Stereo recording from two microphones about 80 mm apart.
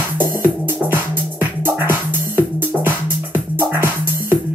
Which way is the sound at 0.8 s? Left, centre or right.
Right.